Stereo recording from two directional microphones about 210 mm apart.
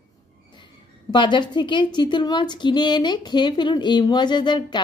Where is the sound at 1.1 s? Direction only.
20° left (ahead or behind).